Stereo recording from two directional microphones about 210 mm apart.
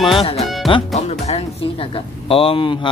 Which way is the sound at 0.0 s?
25° left (ahead or behind).